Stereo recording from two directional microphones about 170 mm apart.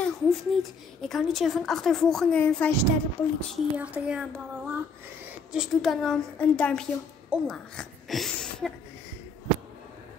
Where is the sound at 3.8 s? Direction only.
10° right (ahead or behind).